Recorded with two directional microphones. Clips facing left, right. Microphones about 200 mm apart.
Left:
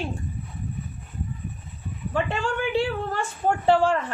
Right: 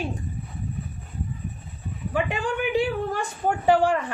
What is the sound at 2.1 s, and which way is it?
A man's voice, 15° right (ahead or behind).